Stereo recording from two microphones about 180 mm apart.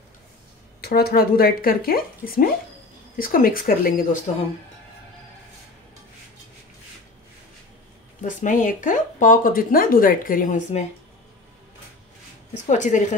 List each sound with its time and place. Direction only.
0.7 s speech: 60° left (ahead or behind)
8.2 s speech: 45° left (ahead or behind)
12.5 s speech: 40° left (ahead or behind)